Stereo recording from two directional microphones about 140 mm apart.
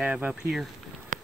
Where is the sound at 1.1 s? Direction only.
65° right (ahead or behind).